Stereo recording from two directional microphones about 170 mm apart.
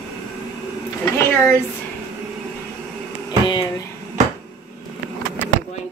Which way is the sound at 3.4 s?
25° left (ahead or behind).